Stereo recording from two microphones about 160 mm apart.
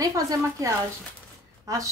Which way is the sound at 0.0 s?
20° right (ahead or behind).